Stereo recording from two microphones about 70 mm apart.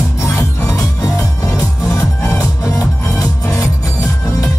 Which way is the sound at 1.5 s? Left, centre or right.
Left.